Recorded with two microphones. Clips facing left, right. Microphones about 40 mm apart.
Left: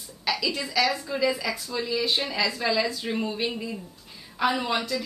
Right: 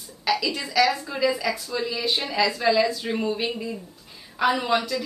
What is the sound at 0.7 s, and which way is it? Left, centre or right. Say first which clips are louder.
Speech: right 5 dB; centre.